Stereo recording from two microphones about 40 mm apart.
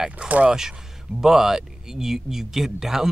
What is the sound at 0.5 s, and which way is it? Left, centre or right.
Speech, centre.